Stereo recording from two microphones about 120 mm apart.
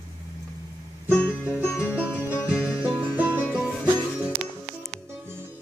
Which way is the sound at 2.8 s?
15° right (ahead or behind).